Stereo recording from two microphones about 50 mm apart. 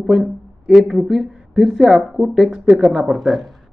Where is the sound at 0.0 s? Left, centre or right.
Centre.